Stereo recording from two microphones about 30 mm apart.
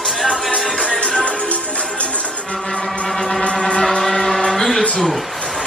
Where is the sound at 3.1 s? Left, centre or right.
Centre.